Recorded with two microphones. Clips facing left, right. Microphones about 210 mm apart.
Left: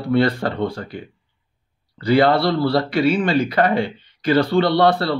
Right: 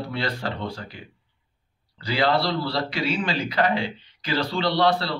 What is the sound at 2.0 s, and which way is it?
A man's voice, 55° left (ahead or behind).